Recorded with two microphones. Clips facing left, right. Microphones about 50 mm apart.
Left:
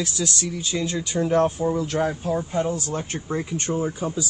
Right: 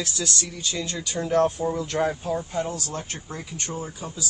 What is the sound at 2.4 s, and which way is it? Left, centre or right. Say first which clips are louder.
Speech: left 4 dB; centre.